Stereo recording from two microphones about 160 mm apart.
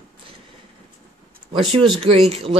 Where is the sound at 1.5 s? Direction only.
35° right (ahead or behind).